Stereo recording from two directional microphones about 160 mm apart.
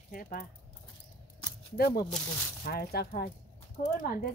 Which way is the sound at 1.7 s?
75° left (ahead or behind).